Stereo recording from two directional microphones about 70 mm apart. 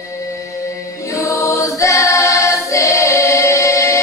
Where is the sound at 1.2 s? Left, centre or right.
Left.